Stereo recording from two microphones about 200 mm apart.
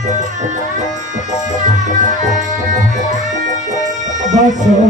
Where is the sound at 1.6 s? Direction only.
40° right (ahead or behind).